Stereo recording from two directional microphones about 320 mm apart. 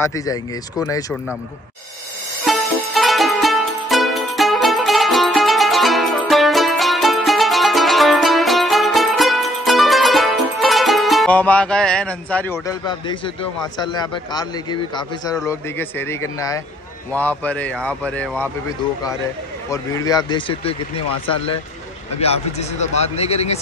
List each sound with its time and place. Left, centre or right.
0.0 s speech: centre
2.4 s music: centre
15.3 s speech: centre
19.7 s speech: centre